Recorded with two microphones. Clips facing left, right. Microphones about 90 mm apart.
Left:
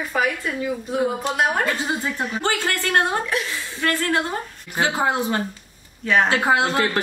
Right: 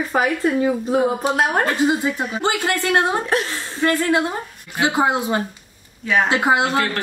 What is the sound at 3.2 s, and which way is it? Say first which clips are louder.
Speech: right 4 dB; 40° right (ahead or behind).